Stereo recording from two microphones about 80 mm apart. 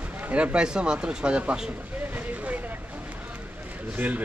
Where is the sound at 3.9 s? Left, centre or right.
Right.